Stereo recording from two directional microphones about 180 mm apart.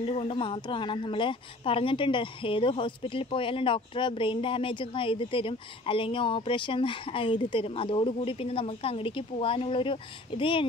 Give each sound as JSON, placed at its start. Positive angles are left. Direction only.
{"t": 0.0, "sound": "a woman's voice", "side_deg": 30}